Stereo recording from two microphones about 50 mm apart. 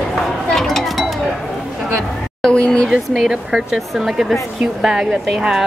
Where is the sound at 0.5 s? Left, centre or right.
Centre.